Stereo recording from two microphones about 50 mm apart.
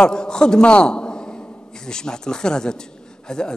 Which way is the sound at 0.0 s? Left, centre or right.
Centre.